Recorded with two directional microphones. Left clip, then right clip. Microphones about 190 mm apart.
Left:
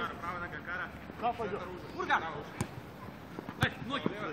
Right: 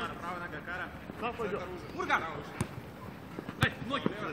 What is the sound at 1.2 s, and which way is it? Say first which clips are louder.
Speech: left 4 dB; 5° left (ahead or behind).